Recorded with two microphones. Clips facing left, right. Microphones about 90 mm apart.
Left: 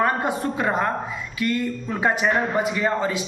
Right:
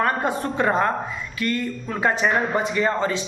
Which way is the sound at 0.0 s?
15° left (ahead or behind).